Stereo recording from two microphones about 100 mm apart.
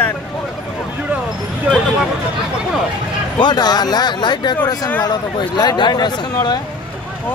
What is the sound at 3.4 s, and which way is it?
Speech, 45° left (ahead or behind).